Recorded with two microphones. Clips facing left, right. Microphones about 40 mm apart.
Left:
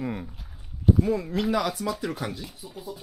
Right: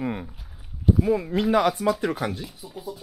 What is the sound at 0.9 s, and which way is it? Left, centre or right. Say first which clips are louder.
Speech: right 1 dB; centre.